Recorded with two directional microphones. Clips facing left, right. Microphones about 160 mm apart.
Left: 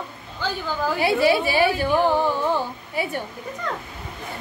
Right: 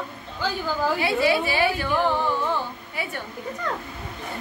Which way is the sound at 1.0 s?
35° left (ahead or behind).